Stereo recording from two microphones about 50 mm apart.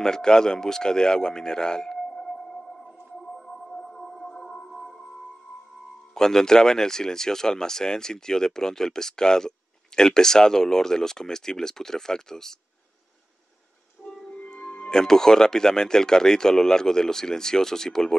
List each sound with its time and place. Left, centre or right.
0.0 s speech: centre
3.3 s music: centre
6.1 s speech: centre
14.0 s music: centre
14.3 s music: left
14.9 s speech: centre